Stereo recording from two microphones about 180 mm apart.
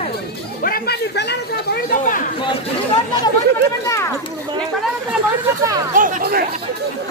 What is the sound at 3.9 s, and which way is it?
Speech, 15° left (ahead or behind).